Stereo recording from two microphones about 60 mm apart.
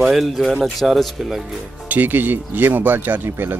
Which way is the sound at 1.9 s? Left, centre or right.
Right.